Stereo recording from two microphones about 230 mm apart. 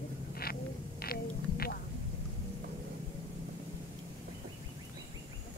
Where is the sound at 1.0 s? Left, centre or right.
Left.